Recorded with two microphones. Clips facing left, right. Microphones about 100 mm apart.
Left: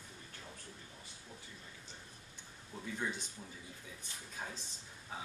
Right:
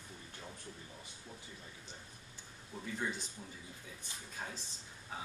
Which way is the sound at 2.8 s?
Centre (ahead or behind).